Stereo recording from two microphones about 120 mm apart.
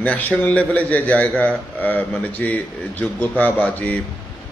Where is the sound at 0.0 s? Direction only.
10° left (ahead or behind).